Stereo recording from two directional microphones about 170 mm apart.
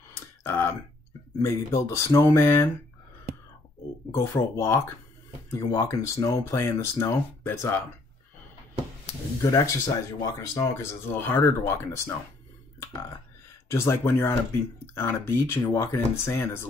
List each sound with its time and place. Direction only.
0.4 s a sound: 15° left (ahead or behind)
1.4 s speech: 15° left (ahead or behind)
4.1 s speech: 15° left (ahead or behind)
9.4 s speech: 20° left (ahead or behind)
13.7 s speech: 15° left (ahead or behind)